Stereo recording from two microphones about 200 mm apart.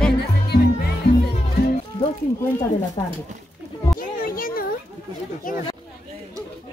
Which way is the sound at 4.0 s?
45° left (ahead or behind).